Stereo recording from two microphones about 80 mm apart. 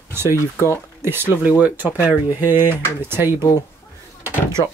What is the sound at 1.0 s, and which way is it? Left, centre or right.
Speech, right.